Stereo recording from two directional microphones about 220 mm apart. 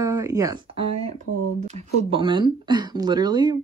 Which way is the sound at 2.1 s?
20° right (ahead or behind).